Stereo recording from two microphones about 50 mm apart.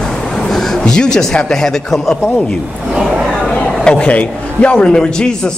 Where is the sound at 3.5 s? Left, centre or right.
Centre.